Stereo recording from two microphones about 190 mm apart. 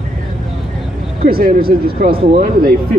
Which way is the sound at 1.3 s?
50° right (ahead or behind).